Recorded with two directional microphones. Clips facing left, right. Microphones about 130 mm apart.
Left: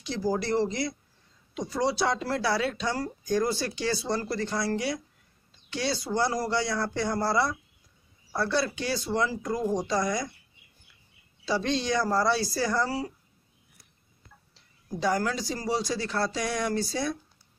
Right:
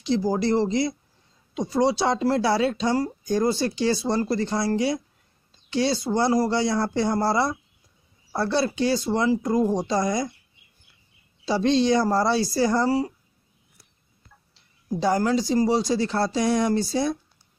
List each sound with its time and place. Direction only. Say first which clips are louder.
0.0 s speech: right 6 dB; 25° right (ahead or behind)
11.4 s speech: right 7 dB; 30° right (ahead or behind)
15.0 s speech: right 5 dB; 30° right (ahead or behind)